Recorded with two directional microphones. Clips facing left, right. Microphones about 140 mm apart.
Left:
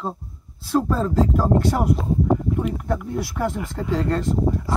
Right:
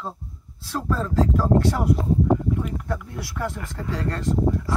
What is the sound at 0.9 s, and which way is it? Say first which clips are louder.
Speech: left 3 dB; 30° left (ahead or behind).